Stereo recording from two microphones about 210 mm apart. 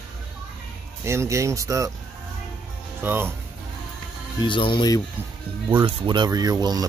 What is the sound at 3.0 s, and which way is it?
Speech, 10° right (ahead or behind).